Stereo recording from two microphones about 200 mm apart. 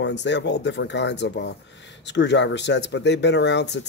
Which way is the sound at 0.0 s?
60° left (ahead or behind).